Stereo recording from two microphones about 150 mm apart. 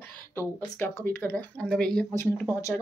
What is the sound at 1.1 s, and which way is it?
Speech, 10° left (ahead or behind).